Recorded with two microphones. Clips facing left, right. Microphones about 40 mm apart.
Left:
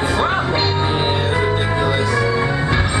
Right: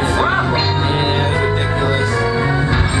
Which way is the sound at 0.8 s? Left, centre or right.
Centre.